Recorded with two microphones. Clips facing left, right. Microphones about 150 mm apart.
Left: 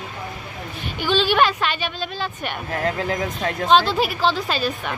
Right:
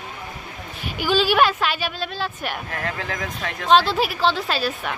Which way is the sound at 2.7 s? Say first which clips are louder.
Left 5 dB; 30° left (ahead or behind).